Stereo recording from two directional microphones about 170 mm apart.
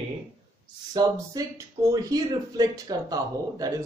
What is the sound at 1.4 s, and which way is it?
Speech, 20° right (ahead or behind).